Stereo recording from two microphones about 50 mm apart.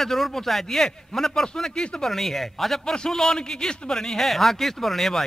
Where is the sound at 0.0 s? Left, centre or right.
Centre.